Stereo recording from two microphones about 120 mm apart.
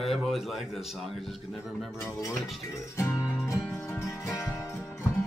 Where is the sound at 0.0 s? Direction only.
Centre (ahead or behind).